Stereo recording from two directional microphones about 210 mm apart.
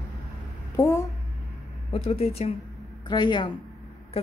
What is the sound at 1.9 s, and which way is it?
Speech, 30° left (ahead or behind).